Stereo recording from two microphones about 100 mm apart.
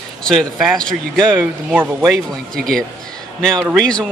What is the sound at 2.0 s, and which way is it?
A man's voice, centre (ahead or behind).